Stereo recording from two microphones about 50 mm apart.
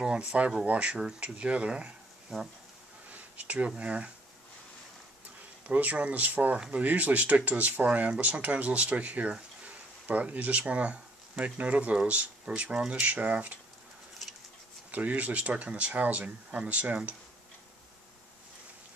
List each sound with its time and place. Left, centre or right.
0.0 s speech: centre
5.7 s speech: right
13.0 s speech: right
14.9 s speech: right